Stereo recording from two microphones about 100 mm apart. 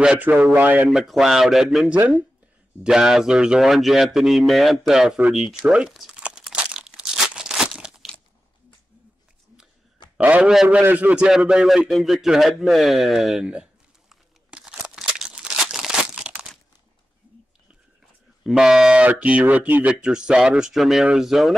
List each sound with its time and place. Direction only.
0.0 s speech: 15° right (ahead or behind)
0.8 s speech: centre (ahead or behind)
5.7 s crumpling: 5° right (ahead or behind)
10.1 s a man's voice: 10° right (ahead or behind)
10.7 s a sound: 15° right (ahead or behind)
18.4 s speech: 5° right (ahead or behind)